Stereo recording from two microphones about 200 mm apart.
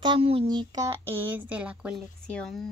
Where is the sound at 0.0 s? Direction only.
25° right (ahead or behind).